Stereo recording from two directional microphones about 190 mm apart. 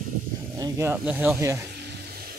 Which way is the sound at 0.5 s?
15° right (ahead or behind).